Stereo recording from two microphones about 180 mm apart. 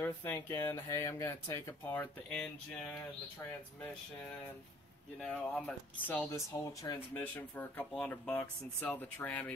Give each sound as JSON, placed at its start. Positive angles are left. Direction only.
{"t": 0.0, "sound": "speech", "side_deg": 10}
{"t": 5.2, "sound": "speech", "side_deg": 5}
{"t": 7.2, "sound": "speech", "side_deg": 10}